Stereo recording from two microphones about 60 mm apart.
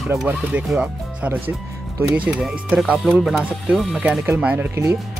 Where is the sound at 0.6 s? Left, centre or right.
Right.